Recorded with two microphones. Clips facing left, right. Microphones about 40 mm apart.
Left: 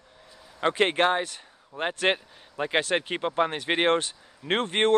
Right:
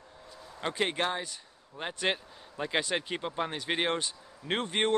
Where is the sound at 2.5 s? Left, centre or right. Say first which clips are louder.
Left 5 dB; left.